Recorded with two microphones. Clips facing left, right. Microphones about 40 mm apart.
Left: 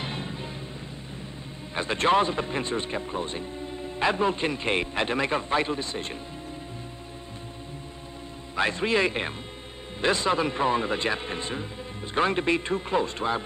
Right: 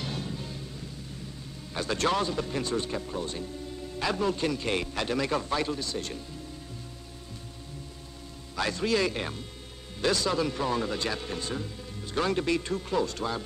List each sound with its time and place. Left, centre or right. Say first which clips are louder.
0.0 s music: left 2 dB; left
1.7 s a man's voice: left 5 dB; left
8.5 s a man's voice: left 3 dB; left